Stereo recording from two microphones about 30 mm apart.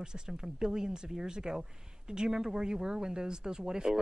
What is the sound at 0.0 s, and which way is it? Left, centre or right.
A man's voice, right.